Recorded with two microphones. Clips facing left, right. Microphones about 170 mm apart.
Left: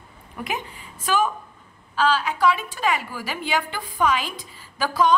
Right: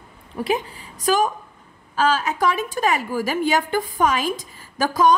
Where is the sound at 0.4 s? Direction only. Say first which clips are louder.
Right 7 dB; 35° right (ahead or behind).